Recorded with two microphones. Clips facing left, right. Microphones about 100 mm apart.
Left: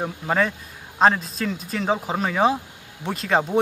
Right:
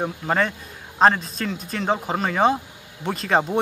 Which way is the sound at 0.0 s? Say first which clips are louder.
Even; centre (ahead or behind).